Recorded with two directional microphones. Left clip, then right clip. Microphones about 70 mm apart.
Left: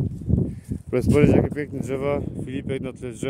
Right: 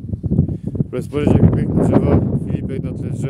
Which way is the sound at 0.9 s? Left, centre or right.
Centre.